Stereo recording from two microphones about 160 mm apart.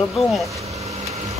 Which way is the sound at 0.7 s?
40° right (ahead or behind).